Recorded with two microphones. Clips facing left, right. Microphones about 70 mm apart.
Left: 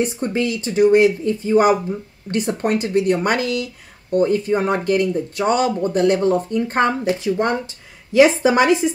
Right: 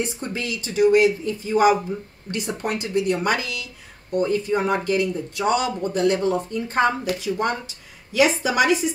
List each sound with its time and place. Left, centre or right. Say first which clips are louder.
0.2 s speech: left 8 dB; left